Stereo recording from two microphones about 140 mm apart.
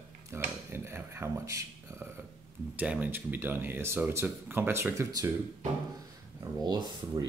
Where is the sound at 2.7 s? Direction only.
10° right (ahead or behind).